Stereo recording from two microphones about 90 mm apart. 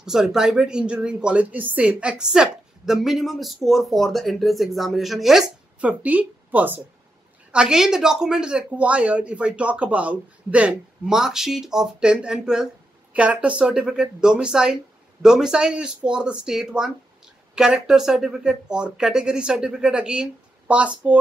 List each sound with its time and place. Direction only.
0.0 s speech: 5° right (ahead or behind)
7.5 s speech: 5° right (ahead or behind)